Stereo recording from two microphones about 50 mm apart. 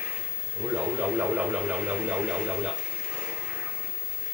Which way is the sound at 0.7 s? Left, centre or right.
Centre.